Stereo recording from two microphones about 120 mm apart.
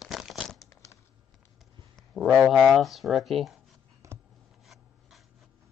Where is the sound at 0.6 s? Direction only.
25° left (ahead or behind).